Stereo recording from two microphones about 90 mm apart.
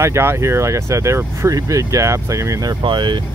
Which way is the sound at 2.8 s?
60° right (ahead or behind).